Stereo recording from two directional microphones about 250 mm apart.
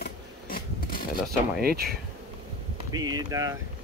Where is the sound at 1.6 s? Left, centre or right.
Right.